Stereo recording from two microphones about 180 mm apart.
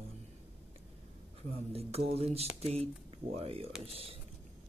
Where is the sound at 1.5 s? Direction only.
35° right (ahead or behind).